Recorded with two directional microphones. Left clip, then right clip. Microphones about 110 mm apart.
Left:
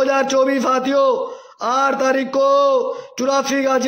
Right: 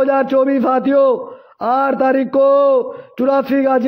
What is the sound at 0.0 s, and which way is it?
A man's voice, 30° right (ahead or behind).